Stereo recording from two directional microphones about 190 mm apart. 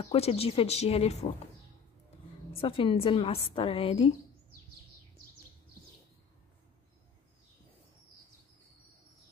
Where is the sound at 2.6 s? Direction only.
30° left (ahead or behind).